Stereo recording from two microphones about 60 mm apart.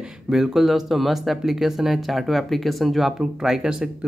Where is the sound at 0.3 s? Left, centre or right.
Centre.